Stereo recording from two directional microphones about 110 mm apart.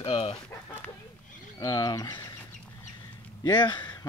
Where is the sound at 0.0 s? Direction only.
55° left (ahead or behind).